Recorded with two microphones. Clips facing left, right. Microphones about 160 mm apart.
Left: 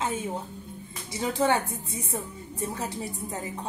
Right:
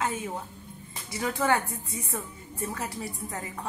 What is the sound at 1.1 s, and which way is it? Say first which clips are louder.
A woman's voice: left 2 dB; 25° left (ahead or behind).